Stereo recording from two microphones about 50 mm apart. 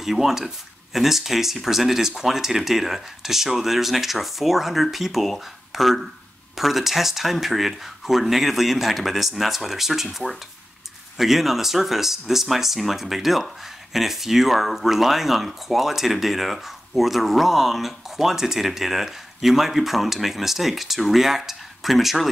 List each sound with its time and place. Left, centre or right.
0.0 s speech: centre